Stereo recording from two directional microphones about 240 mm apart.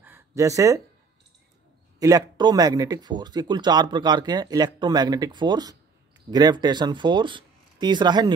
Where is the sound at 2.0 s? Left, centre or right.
Centre.